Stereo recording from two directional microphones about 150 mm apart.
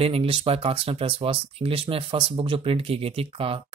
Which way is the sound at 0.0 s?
40° right (ahead or behind).